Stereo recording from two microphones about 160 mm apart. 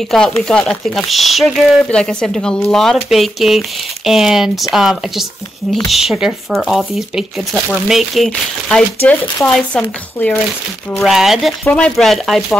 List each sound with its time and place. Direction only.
0.4 s speech: 5° left (ahead or behind)